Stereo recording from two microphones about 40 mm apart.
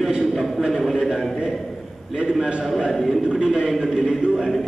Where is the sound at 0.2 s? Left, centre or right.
Centre.